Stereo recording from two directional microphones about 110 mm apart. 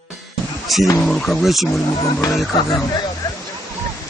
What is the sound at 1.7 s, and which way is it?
Speech, 30° left (ahead or behind).